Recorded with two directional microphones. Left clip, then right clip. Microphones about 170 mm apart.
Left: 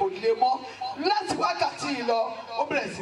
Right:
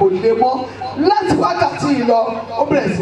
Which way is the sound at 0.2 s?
5° left (ahead or behind).